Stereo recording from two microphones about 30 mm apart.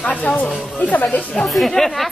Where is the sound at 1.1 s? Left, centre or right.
Left.